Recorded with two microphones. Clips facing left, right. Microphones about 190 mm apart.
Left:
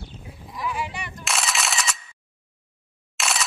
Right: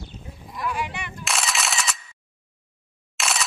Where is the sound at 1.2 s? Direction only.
Centre (ahead or behind).